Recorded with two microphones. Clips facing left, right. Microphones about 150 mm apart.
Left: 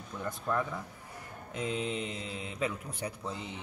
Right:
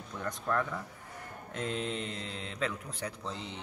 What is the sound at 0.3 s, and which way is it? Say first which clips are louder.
A man's voice: even; 10° left (ahead or behind).